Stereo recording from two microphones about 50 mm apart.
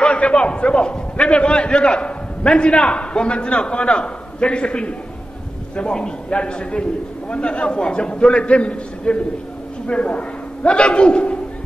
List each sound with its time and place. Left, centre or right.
0.0 s a man's voice: left